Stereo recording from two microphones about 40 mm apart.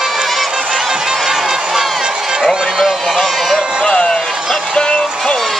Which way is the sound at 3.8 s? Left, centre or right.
Left.